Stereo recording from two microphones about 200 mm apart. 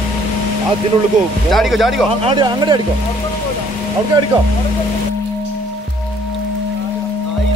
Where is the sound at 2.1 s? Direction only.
25° right (ahead or behind).